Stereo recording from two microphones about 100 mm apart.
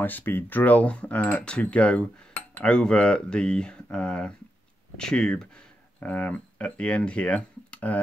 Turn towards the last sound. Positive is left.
turn(degrees=15)  # may be behind; listen again after turning